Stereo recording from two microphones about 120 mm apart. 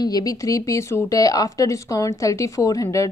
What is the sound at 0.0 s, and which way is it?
Speech, 30° left (ahead or behind).